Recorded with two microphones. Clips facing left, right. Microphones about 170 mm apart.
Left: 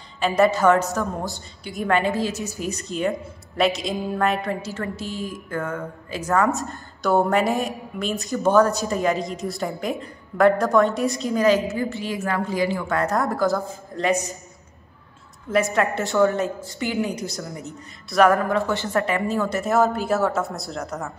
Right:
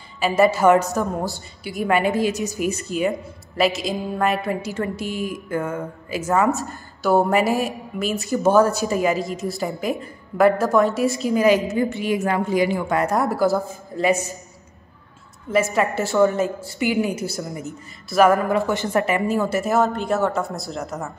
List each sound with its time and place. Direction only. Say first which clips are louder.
0.2 s a woman's voice: right 1 dB; 5° right (ahead or behind)
1.6 s a woman's voice: right 2 dB; 5° right (ahead or behind)
2.9 s a woman's voice: right 2 dB; 5° right (ahead or behind)
11.7 s a woman's voice: right 5 dB; 15° right (ahead or behind)
15.5 s a woman's voice: right 1 dB; centre (ahead or behind)
18.7 s a woman's voice: right 2 dB; 15° right (ahead or behind)
19.6 s a woman's voice: even; centre (ahead or behind)